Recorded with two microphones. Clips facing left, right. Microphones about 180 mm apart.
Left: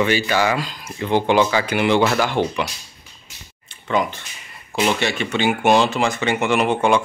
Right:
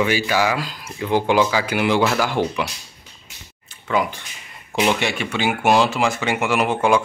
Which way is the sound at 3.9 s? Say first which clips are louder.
Even; 10° right (ahead or behind).